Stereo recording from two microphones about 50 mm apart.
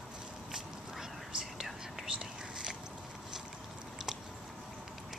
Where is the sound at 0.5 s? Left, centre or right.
Centre.